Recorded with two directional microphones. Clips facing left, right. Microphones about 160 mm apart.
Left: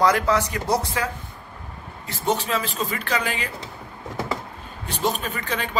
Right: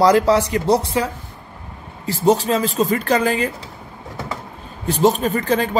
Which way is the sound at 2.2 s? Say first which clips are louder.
Right 8 dB; 35° right (ahead or behind).